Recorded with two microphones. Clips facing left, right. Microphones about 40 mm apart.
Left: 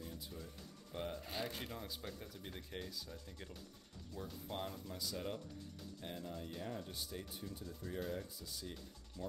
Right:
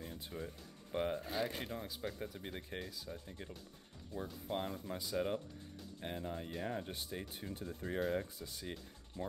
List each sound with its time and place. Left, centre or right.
0.0 s music: right
0.9 s speech: right
1.3 s speech: centre
2.1 s speech: right
2.8 s speech: centre
3.1 s speech: right
4.7 s speech: right
8.2 s speech: right